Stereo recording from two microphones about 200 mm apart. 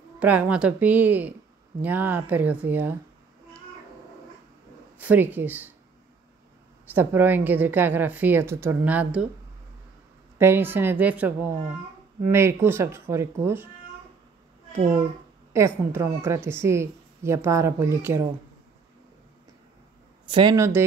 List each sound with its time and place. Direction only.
0.2 s a woman's voice: 5° right (ahead or behind)
4.9 s speech: 10° right (ahead or behind)
6.9 s a woman's voice: 10° right (ahead or behind)
10.4 s a woman's voice: 10° right (ahead or behind)
15.5 s a woman's voice: 15° right (ahead or behind)
20.2 s speech: 25° right (ahead or behind)